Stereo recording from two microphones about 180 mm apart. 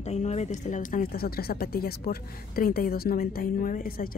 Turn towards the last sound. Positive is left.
turn(degrees=55)  # may be behind; listen again after turning